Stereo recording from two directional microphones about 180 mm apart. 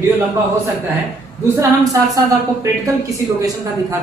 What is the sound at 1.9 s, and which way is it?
Speech, 20° right (ahead or behind).